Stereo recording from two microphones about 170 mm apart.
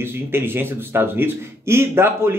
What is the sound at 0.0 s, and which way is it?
Speech, 15° right (ahead or behind).